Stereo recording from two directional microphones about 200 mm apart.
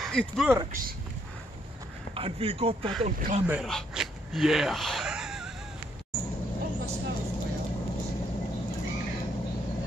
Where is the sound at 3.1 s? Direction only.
40° right (ahead or behind).